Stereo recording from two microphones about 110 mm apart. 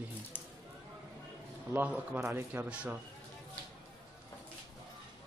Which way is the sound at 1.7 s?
15° right (ahead or behind).